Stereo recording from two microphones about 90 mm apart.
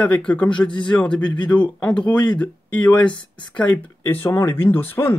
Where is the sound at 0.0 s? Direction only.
15° left (ahead or behind).